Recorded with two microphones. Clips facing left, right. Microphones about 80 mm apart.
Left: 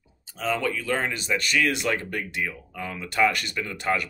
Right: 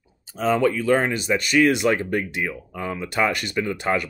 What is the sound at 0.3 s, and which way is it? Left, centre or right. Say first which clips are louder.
Speech: right 7 dB; right.